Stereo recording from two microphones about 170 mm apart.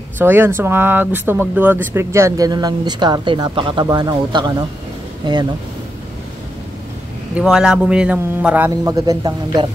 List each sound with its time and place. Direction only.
0.2 s speech: 15° right (ahead or behind)
7.3 s a man's voice: 5° right (ahead or behind)
8.8 s speech: 20° right (ahead or behind)